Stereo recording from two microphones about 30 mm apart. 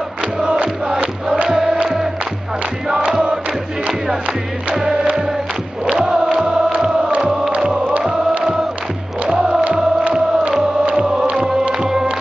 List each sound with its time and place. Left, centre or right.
0.8 s music: right
1.5 s choir: centre
5.9 s choir: right
10.9 s music: right
11.8 s music: centre